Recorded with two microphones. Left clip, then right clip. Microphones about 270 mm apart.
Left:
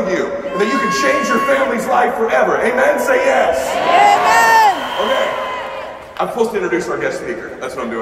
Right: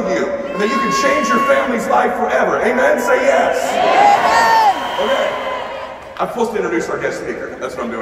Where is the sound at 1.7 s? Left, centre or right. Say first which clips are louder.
Even; centre.